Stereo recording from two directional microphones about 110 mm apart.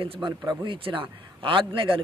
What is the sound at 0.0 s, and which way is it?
Speech, 45° right (ahead or behind).